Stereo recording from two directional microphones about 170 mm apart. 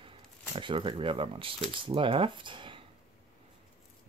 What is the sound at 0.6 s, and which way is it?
Speech, 30° right (ahead or behind).